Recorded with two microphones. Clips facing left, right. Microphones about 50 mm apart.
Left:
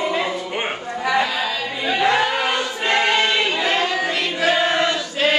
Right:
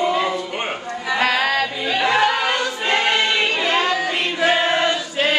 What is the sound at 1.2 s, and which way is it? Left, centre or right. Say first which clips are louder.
Singing: right 5 dB; right.